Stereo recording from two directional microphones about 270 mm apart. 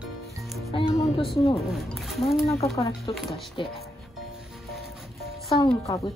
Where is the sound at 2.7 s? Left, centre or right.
Left.